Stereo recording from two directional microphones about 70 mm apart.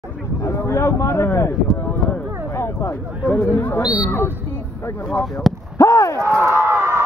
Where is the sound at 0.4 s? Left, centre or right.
Left.